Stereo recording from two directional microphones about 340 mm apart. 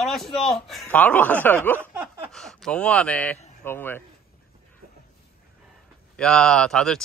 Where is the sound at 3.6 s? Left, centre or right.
Centre.